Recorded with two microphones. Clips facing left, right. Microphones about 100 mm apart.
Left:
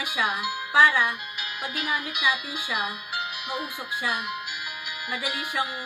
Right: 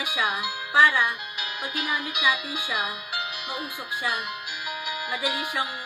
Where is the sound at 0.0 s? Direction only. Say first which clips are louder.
Even; centre (ahead or behind).